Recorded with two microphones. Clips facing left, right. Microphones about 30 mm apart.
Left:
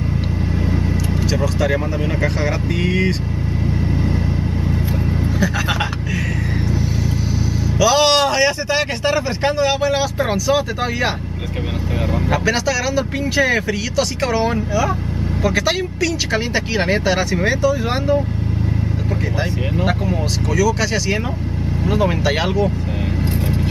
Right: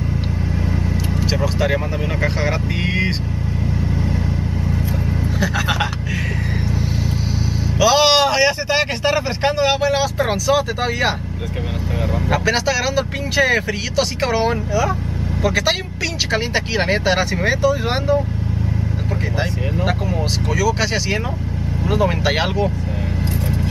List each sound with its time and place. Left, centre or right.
1.3 s speech: centre
5.4 s speech: centre
7.8 s speech: centre
12.3 s speech: centre
20.5 s speech: centre
22.2 s speech: centre